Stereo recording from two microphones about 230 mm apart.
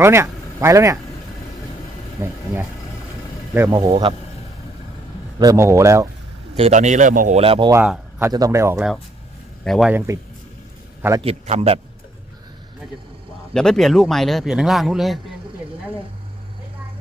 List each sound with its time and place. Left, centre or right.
0.0 s speech: centre
2.2 s a man's voice: centre
3.5 s a man's voice: centre
5.4 s a man's voice: centre
6.5 s speech: right
7.7 s a man's voice: centre
11.2 s a man's voice: right
13.5 s speech: centre